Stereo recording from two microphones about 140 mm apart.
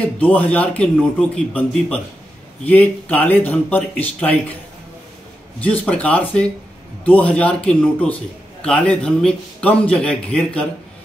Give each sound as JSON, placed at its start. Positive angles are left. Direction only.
{"t": 0.0, "sound": "a man's voice", "side_deg": 10}
{"t": 5.6, "sound": "a man's voice", "side_deg": 10}